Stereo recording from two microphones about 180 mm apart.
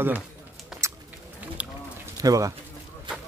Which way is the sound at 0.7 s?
Centre (ahead or behind).